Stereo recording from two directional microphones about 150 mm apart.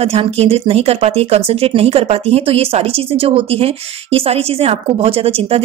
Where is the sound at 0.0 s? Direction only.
45° right (ahead or behind).